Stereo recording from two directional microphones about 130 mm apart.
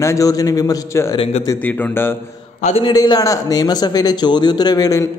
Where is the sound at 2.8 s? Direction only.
35° left (ahead or behind).